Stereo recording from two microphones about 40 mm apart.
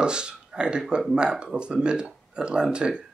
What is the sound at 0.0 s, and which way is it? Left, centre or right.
Speech, right.